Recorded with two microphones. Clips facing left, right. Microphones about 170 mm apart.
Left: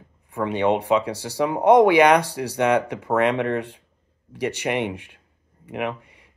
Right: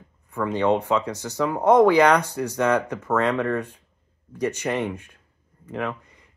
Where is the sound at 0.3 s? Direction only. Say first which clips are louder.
Even; 20° left (ahead or behind).